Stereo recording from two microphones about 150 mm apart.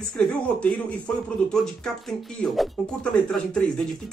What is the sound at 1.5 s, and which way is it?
Speech, 5° left (ahead or behind).